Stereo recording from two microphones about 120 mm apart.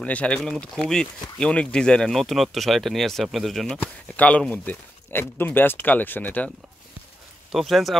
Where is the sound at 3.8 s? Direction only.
10° left (ahead or behind).